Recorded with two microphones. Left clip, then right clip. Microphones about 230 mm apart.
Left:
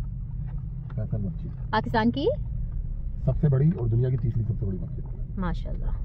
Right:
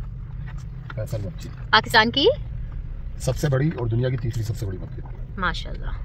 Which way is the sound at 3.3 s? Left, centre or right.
Right.